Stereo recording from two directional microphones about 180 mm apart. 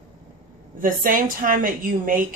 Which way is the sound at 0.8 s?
50° right (ahead or behind).